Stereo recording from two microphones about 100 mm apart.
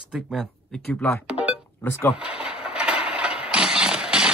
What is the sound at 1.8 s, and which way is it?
Speech, 20° left (ahead or behind).